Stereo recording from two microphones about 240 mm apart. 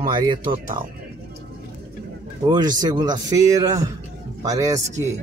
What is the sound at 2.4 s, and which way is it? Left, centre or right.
A man's voice, centre.